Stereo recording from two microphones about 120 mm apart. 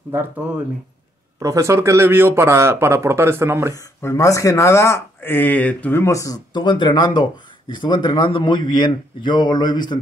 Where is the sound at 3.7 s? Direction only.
25° left (ahead or behind).